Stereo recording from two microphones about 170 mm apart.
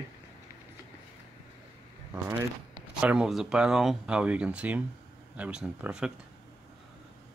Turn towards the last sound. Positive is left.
turn(degrees=-5)  # may be behind; listen again after turning